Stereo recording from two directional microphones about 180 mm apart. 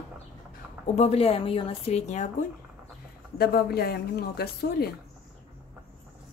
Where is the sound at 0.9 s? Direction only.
35° left (ahead or behind).